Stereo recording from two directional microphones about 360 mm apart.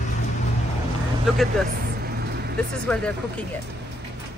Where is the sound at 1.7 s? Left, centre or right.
Right.